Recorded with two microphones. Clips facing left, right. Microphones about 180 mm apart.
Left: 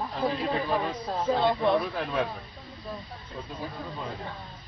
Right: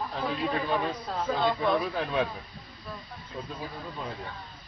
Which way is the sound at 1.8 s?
Centre (ahead or behind).